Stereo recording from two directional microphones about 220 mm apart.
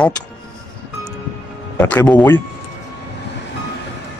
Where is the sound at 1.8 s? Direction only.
5° left (ahead or behind).